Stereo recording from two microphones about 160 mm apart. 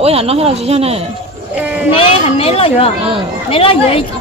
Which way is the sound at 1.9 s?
35° left (ahead or behind).